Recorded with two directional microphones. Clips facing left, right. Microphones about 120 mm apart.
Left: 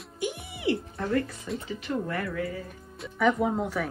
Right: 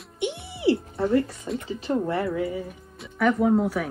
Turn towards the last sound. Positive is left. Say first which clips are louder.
# right 6 dB
turn(degrees=-5)  # may be behind; listen again after turning